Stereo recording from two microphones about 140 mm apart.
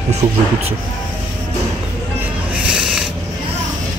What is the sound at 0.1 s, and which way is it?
Speech, 50° right (ahead or behind).